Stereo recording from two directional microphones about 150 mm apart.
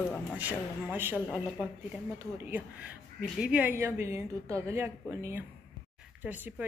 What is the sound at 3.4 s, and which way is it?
Speech, 10° right (ahead or behind).